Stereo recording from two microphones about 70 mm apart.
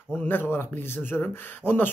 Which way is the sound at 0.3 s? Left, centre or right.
Left.